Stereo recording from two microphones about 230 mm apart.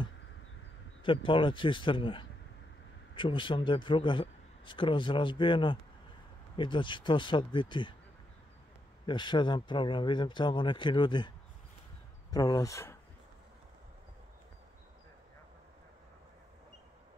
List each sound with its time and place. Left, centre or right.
1.0 s a man's voice: left
9.0 s a man's voice: centre